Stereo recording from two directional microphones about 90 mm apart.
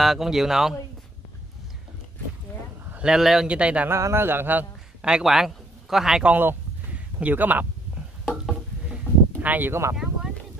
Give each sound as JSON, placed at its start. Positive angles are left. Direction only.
{"t": 0.0, "sound": "speech", "side_deg": -5}
{"t": 2.9, "sound": "a man's voice", "side_deg": -10}
{"t": 3.9, "sound": "a man's voice", "side_deg": -30}
{"t": 5.1, "sound": "a man's voice", "side_deg": -5}
{"t": 6.3, "sound": "a sound", "side_deg": -20}
{"t": 8.9, "sound": "a sound", "side_deg": -20}